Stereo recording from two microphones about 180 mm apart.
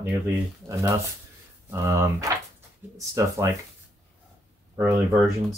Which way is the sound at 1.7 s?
15° right (ahead or behind).